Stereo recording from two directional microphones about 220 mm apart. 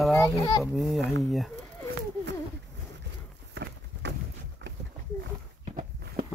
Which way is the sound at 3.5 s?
50° right (ahead or behind).